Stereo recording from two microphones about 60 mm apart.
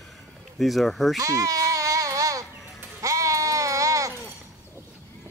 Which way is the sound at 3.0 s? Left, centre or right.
Right.